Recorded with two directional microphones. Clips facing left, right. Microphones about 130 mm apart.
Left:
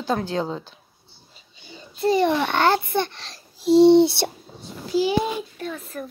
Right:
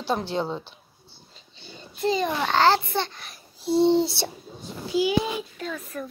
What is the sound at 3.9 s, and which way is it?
Speech, 65° left (ahead or behind).